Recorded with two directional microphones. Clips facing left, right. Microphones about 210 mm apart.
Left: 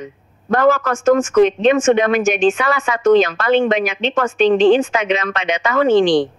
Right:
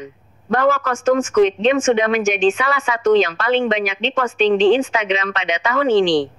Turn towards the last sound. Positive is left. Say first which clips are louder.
# left 2 dB
turn(degrees=50)  # may be behind; listen again after turning